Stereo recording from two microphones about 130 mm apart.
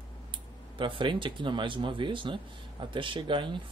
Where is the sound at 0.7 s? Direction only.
40° right (ahead or behind).